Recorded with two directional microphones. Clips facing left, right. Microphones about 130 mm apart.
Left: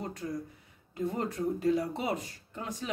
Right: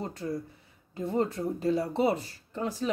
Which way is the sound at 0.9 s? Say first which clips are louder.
Right 4 dB; 30° right (ahead or behind).